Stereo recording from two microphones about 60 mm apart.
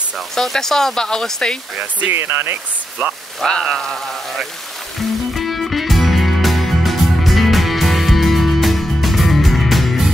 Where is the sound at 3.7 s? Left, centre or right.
Centre.